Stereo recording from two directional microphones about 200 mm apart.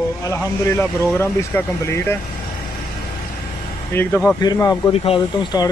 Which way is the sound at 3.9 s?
10° left (ahead or behind).